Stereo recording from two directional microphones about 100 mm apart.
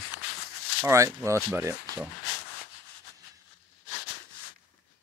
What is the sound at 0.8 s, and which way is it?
Speech, 30° right (ahead or behind).